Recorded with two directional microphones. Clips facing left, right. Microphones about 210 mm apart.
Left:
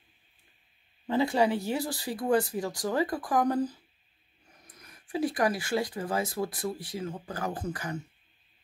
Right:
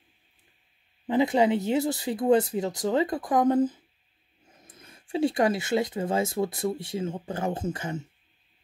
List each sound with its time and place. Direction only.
1.0 s speech: 20° right (ahead or behind)